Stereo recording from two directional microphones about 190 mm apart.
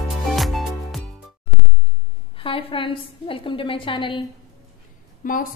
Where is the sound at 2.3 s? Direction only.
25° left (ahead or behind).